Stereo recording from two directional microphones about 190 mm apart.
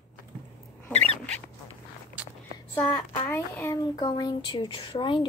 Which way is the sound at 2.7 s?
10° left (ahead or behind).